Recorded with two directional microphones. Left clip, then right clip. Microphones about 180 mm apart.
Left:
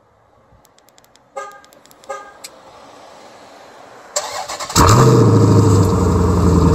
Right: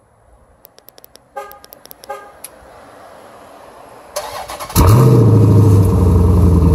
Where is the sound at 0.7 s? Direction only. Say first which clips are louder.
Right 5 dB; 45° right (ahead or behind).